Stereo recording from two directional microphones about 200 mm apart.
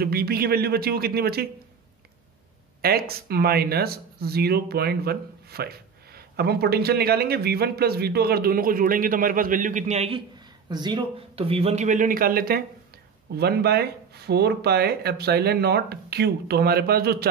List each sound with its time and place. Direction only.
0.0 s speech: 50° right (ahead or behind)
2.8 s a man's voice: 50° right (ahead or behind)